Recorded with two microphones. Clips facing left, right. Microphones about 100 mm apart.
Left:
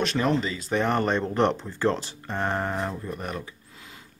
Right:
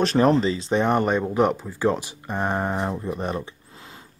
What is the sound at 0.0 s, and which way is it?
Speech, 35° right (ahead or behind).